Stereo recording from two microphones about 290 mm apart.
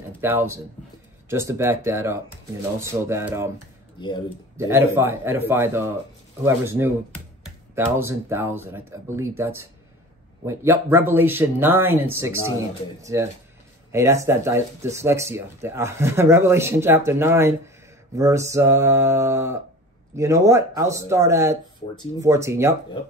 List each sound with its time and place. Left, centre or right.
0.2 s speech: centre
4.0 s speech: centre
4.6 s speech: centre